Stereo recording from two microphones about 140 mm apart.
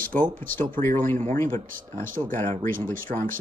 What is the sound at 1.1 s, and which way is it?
Speech, 75° right (ahead or behind).